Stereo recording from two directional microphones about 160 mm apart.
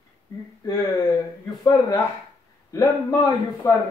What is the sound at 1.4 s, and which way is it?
A man's voice, 20° left (ahead or behind).